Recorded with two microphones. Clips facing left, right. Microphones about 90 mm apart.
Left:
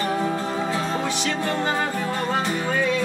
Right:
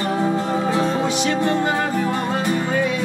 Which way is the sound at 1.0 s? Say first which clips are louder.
Right 5 dB; 20° right (ahead or behind).